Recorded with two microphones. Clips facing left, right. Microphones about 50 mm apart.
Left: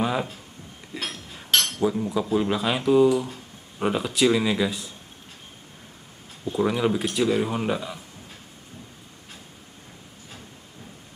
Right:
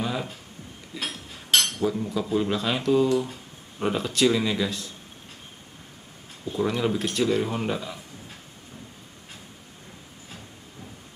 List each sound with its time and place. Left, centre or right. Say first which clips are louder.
0.0 s a sound: left 4 dB; centre
1.5 s cutlery: left 1 dB; centre
2.1 s speech: left 2 dB; centre
6.5 s speech: left 2 dB; centre